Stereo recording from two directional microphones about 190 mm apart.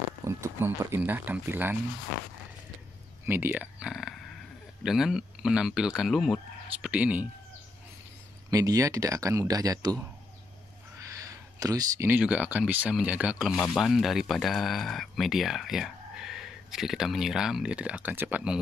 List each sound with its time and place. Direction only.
0.2 s speech: 15° right (ahead or behind)
3.3 s speech: 10° right (ahead or behind)
8.5 s speech: 20° right (ahead or behind)
11.0 s speech: 15° right (ahead or behind)